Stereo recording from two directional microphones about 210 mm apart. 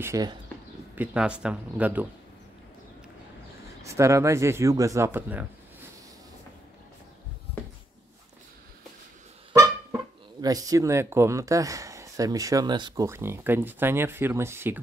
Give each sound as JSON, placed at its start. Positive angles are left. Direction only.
{"t": 0.0, "sound": "speech", "side_deg": -15}
{"t": 0.9, "sound": "speech", "side_deg": -5}
{"t": 3.8, "sound": "speech", "side_deg": -15}
{"t": 10.4, "sound": "speech", "side_deg": -15}